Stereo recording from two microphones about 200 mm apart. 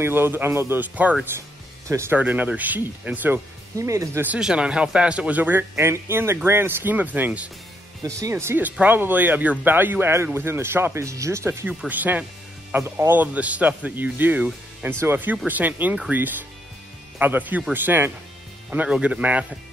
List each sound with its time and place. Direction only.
0.0 s speech: 10° right (ahead or behind)